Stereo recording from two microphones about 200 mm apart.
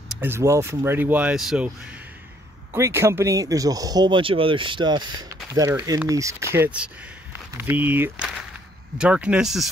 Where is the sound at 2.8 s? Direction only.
15° right (ahead or behind).